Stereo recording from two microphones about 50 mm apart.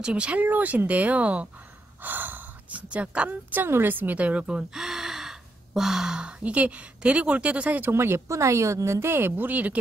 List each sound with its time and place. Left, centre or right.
0.0 s speech: right
2.0 s snort: right
2.9 s a woman's voice: right
4.2 s speech: right
4.7 s gasp: centre
6.4 s speech: right
7.9 s speech: right
8.3 s a woman's voice: right